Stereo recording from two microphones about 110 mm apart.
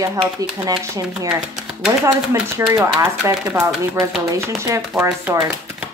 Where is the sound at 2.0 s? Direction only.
30° right (ahead or behind).